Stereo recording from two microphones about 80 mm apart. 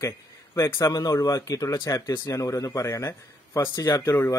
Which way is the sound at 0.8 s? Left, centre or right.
Left.